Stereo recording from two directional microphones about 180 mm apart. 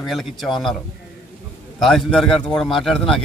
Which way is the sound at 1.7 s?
Centre (ahead or behind).